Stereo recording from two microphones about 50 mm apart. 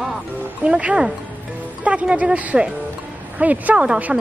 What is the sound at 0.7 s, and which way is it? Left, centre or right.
Speech, right.